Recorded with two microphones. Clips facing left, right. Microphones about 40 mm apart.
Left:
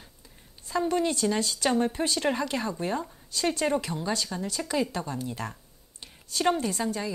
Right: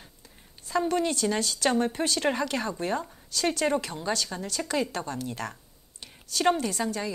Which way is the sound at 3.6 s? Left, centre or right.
Centre.